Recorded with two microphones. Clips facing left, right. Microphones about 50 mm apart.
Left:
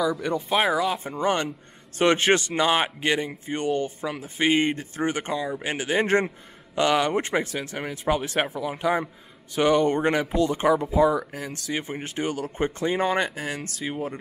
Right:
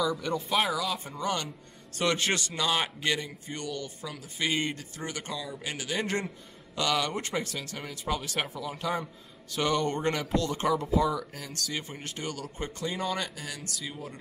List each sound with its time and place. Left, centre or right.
0.0 s a man's voice: centre; by 14.1 s left